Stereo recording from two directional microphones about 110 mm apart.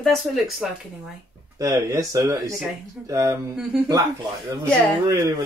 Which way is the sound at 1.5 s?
30° right (ahead or behind).